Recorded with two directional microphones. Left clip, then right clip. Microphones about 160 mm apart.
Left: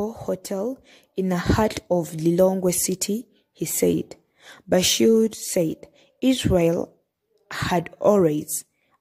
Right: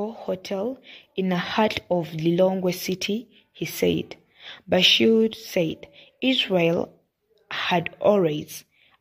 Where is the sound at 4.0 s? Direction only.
40° left (ahead or behind).